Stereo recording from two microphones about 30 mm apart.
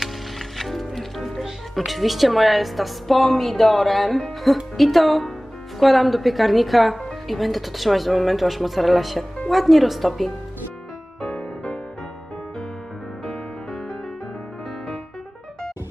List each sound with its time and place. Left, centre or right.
0.6 s music: centre
1.9 s speech: centre
11.1 s music: left